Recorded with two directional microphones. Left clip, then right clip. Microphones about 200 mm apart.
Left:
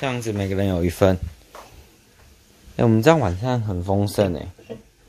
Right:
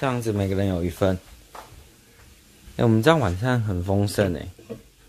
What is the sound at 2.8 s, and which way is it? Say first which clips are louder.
Speech: left 2 dB; 10° left (ahead or behind).